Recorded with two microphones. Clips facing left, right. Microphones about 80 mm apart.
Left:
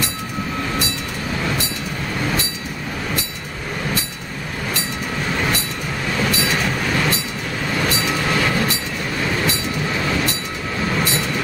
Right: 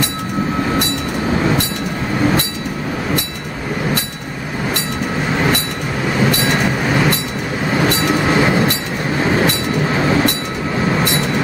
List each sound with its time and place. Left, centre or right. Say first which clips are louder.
6.6 s train: right 5 dB; right
8.1 s train: right 7 dB; right